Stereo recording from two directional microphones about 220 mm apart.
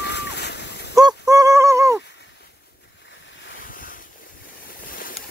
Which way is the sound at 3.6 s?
40° left (ahead or behind).